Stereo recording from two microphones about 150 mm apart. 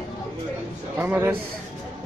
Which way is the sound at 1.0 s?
15° right (ahead or behind).